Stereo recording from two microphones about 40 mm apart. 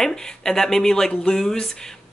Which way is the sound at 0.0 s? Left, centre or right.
Centre.